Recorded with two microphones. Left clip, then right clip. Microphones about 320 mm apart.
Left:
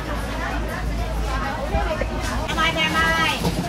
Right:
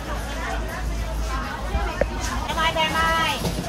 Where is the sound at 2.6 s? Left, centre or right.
Right.